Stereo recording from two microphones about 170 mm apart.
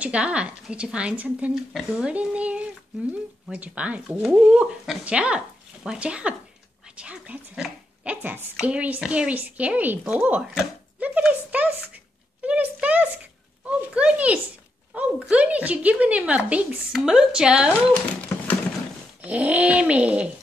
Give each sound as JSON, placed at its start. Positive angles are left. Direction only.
{"t": 0.0, "sound": "a woman's voice", "side_deg": -5}
{"t": 12.4, "sound": "a sound", "side_deg": -10}
{"t": 15.2, "sound": "a woman's voice", "side_deg": -5}
{"t": 19.2, "sound": "a woman's voice", "side_deg": -10}